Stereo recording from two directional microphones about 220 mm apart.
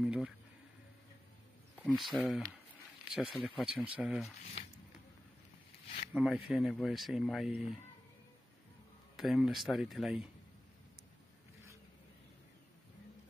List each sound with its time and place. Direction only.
0.0 s a sound: 5° right (ahead or behind)
1.8 s speech: 5° left (ahead or behind)
6.1 s speech: 5° right (ahead or behind)
9.1 s speech: centre (ahead or behind)